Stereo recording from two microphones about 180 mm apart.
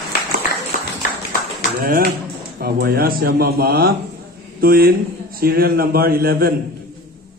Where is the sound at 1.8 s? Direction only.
55° right (ahead or behind).